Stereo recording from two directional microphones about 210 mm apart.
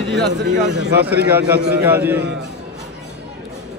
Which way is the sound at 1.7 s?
10° right (ahead or behind).